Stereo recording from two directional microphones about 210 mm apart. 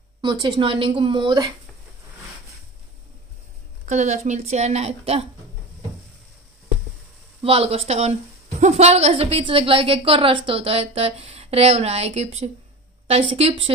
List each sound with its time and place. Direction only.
0.2 s a woman's voice: 20° right (ahead or behind)
3.8 s a woman's voice: 35° right (ahead or behind)
7.4 s a woman's voice: 25° right (ahead or behind)